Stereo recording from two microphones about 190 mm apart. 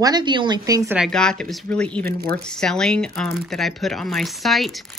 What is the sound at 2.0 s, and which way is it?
Speech, 50° right (ahead or behind).